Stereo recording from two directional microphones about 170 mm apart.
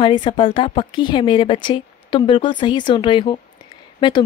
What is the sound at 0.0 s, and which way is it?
Speech, 30° left (ahead or behind).